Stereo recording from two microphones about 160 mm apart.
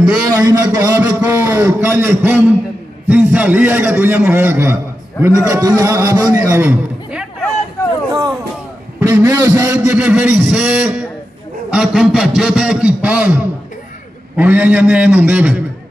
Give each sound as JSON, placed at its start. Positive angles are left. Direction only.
{"t": 0.3, "sound": "a man's voice", "side_deg": -20}
{"t": 7.1, "sound": "a sound", "side_deg": -5}
{"t": 9.0, "sound": "a man's voice", "side_deg": -15}